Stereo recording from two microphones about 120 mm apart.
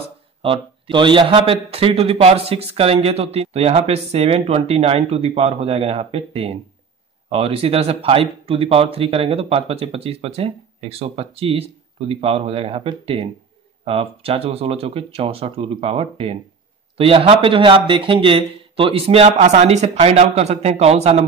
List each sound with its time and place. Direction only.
0.4 s a man's voice: 45° right (ahead or behind)